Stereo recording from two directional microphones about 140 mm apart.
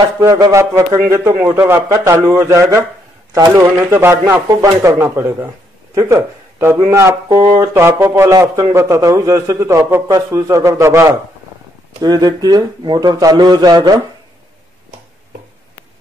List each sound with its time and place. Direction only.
0.2 s speech: 25° right (ahead or behind)